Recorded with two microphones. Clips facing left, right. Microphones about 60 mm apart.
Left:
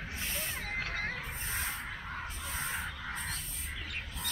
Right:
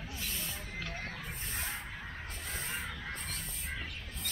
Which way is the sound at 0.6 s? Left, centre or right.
Left.